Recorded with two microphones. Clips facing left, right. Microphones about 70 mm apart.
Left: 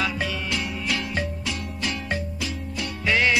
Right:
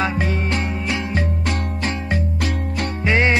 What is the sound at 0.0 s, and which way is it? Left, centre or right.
Music, right.